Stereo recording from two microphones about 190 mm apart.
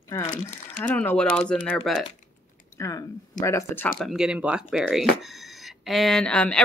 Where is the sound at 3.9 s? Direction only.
Centre (ahead or behind).